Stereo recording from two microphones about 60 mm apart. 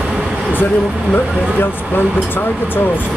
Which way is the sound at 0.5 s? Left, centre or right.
Left.